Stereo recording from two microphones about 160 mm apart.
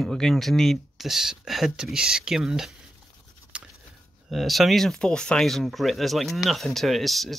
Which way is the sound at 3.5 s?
5° right (ahead or behind).